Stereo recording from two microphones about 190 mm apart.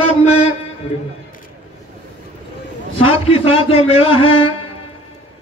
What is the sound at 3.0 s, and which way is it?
A man's voice, 30° left (ahead or behind).